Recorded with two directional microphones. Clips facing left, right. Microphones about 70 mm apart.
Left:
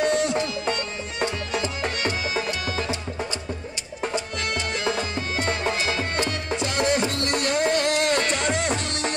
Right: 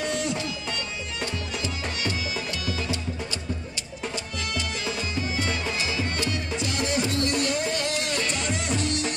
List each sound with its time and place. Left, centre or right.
0.0 s music: left
4.7 s music: left